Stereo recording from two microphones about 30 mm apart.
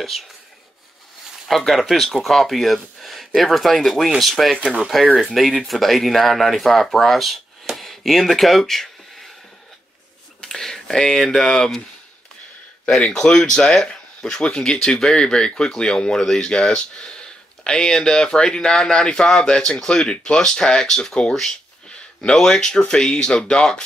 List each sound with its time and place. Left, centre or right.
1.5 s speech: centre
4.6 s speech: right
5.1 s speech: centre
7.7 s a sound: centre
8.4 s speech: centre
8.6 s a sound: centre
10.4 s speech: centre
13.2 s speech: left
13.7 s speech: centre
22.3 s speech: centre